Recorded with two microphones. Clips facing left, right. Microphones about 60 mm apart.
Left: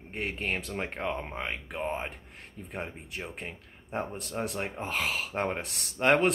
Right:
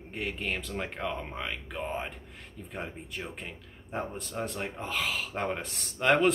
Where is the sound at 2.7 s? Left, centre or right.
Centre.